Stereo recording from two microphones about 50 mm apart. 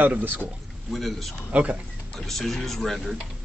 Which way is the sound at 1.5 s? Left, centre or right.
Right.